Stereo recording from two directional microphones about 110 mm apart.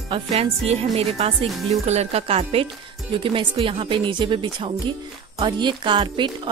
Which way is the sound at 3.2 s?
50° right (ahead or behind).